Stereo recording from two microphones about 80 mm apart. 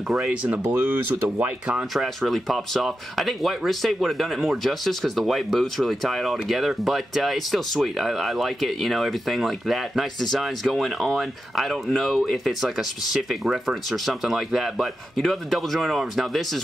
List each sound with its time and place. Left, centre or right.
0.3 s speech: centre
1.7 s speech: centre